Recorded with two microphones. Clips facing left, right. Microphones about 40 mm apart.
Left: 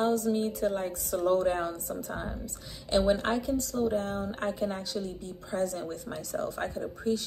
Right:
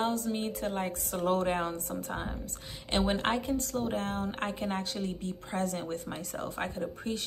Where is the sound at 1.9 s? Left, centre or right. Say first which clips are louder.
Left 1 dB; right.